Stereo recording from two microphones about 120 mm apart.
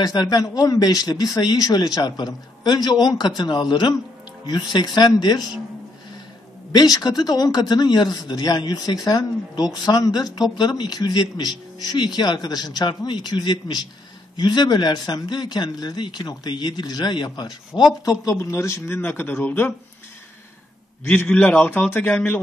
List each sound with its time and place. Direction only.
0.0 s speech: 35° left (ahead or behind)
6.7 s speech: 35° left (ahead or behind)
18.2 s a man's voice: 25° left (ahead or behind)
21.1 s a man's voice: 15° left (ahead or behind)